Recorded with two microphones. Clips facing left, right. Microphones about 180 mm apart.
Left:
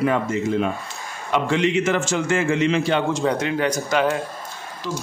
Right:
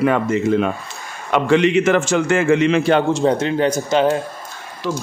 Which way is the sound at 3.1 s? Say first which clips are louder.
Right 5 dB; 30° right (ahead or behind).